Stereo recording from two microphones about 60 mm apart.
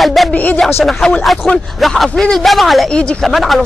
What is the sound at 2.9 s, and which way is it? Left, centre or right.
Speech, centre.